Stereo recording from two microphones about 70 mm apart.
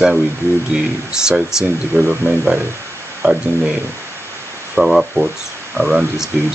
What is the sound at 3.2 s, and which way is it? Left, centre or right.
Speech, right.